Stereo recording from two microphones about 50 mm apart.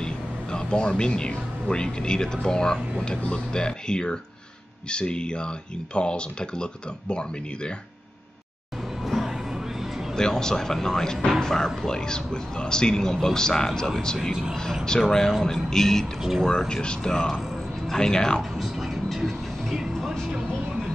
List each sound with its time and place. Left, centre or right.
0.0 s speech: centre
9.0 s music: centre
10.1 s speech: centre
16.2 s speech: centre
16.4 s speech: centre
18.6 s vehicle: centre